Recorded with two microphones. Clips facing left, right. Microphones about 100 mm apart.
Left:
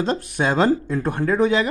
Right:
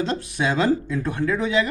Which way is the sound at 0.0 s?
45° left (ahead or behind).